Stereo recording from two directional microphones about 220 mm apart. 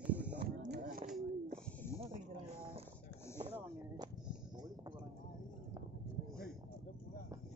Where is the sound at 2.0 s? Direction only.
25° right (ahead or behind).